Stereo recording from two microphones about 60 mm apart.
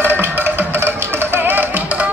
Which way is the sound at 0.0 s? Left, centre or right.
Right.